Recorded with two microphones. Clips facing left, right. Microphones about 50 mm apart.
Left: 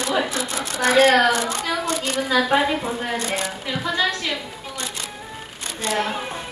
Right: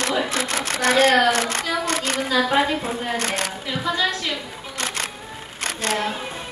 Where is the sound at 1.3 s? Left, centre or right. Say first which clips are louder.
Even; right.